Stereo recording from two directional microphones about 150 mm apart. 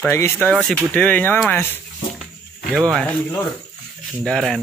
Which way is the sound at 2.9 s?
5° left (ahead or behind).